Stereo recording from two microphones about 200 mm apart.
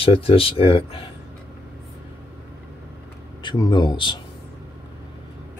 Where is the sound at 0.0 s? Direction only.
30° left (ahead or behind).